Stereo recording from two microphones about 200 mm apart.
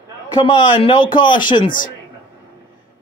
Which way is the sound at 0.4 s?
20° left (ahead or behind).